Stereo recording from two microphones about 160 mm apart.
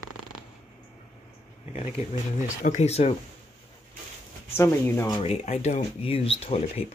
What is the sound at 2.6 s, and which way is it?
Speech, 45° left (ahead or behind).